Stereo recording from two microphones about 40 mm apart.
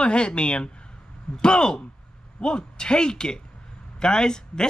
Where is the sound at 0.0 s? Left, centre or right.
Left.